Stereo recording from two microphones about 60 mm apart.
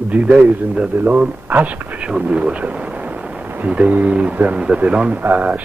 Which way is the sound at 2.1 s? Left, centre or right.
Centre.